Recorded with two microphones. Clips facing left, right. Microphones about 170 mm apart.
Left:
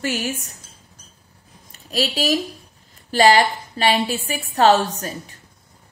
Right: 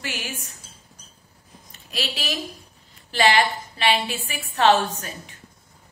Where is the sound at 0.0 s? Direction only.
40° left (ahead or behind).